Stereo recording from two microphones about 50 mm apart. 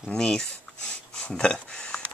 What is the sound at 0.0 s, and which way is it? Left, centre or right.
Speech, centre.